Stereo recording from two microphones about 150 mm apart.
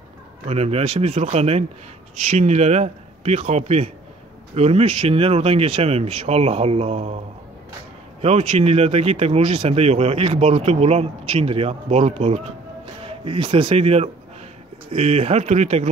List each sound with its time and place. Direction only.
0.5 s speech: 45° right (ahead or behind)
8.2 s speech: 45° right (ahead or behind)